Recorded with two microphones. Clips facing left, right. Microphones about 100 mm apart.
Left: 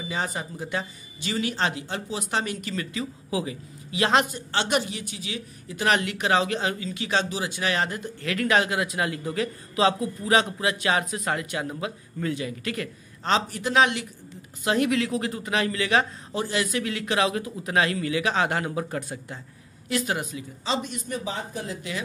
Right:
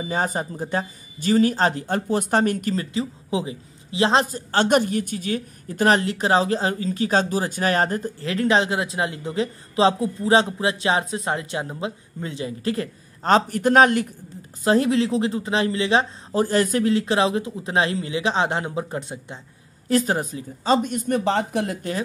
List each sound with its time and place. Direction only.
0.0 s speech: 45° right (ahead or behind)
13.3 s speech: 50° right (ahead or behind)
14.6 s speech: 35° right (ahead or behind)
16.3 s speech: 45° right (ahead or behind); by 19.4 s 25° right (ahead or behind)
19.9 s speech: 40° right (ahead or behind); by 21.7 s 75° right (ahead or behind)